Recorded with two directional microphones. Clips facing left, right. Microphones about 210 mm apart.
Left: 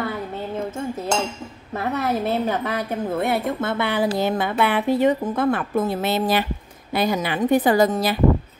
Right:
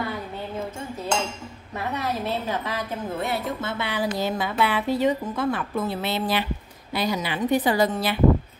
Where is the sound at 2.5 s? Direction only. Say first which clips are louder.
Left 5 dB; 55° left (ahead or behind).